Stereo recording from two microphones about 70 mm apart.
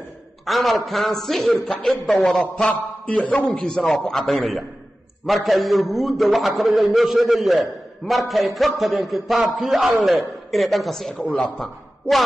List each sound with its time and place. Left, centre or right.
0.5 s a man's voice: centre
2.3 s a man's voice: centre